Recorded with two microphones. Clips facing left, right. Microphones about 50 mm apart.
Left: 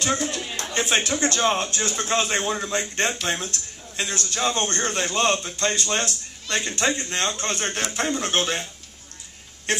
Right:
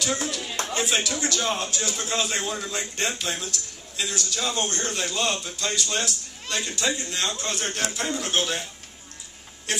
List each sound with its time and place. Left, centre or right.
0.0 s a sound: left
0.7 s a man's voice: left
9.7 s a man's voice: left